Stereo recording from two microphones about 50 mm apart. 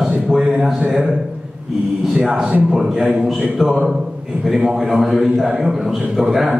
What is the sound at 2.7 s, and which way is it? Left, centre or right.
Speech, centre.